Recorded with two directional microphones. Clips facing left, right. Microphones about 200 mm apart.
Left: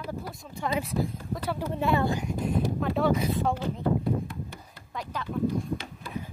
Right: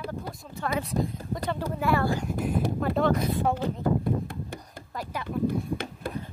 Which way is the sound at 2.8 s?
5° left (ahead or behind).